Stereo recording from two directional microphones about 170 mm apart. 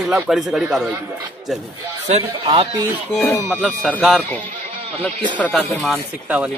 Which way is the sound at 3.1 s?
15° left (ahead or behind).